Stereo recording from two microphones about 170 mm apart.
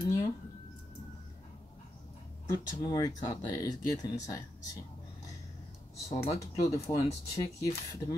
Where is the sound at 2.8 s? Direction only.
20° left (ahead or behind).